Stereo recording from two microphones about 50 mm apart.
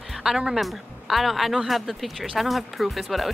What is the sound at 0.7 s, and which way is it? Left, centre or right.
Speech, centre.